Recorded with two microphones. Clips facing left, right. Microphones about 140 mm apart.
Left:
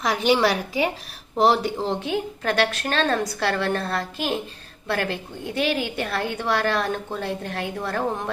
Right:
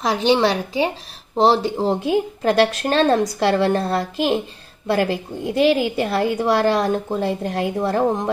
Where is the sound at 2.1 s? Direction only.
15° right (ahead or behind).